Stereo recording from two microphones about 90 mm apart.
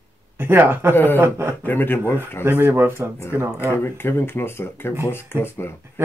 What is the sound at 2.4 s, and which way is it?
Speech, 25° right (ahead or behind).